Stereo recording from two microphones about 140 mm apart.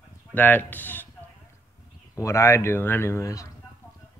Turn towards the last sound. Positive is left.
turn(degrees=25)  # may be behind; listen again after turning